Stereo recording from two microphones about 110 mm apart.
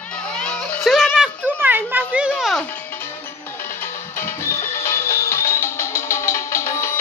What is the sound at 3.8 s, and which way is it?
Music, 20° left (ahead or behind).